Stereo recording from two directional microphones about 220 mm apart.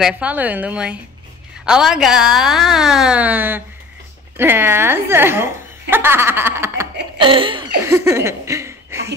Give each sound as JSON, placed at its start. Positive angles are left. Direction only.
{"t": 0.0, "sound": "a woman's voice", "side_deg": -5}
{"t": 7.2, "sound": "laughter", "side_deg": -25}
{"t": 7.8, "sound": "a woman's voice", "side_deg": -10}